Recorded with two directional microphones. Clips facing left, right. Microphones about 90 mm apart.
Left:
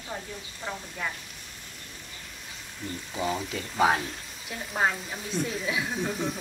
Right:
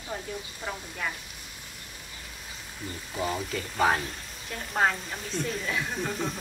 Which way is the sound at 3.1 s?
Centre (ahead or behind).